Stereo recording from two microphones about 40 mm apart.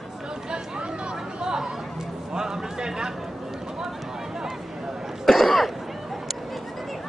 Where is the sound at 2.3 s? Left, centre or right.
Centre.